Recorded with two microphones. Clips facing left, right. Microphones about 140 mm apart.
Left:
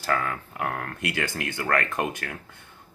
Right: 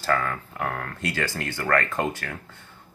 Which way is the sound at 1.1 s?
20° left (ahead or behind).